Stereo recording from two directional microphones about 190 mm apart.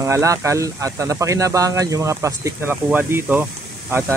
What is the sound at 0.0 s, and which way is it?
Speech, 15° right (ahead or behind).